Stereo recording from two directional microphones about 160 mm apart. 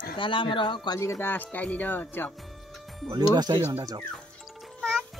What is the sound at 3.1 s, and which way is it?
Speech, 25° right (ahead or behind).